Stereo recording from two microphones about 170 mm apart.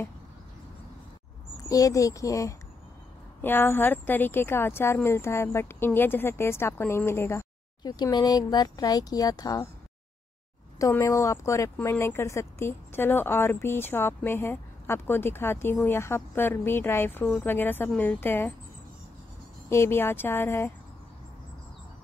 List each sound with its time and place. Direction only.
1.6 s speech: 20° left (ahead or behind)
10.8 s speech: 15° left (ahead or behind)
19.7 s speech: 15° left (ahead or behind)